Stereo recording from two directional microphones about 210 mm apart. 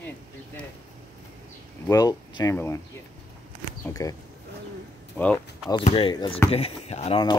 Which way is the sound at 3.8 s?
15° left (ahead or behind).